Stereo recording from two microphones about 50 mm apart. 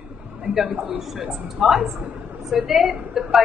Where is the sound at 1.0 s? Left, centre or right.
Centre.